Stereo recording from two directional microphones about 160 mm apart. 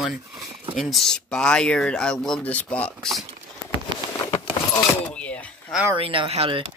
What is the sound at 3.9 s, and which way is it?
Patter, 30° right (ahead or behind).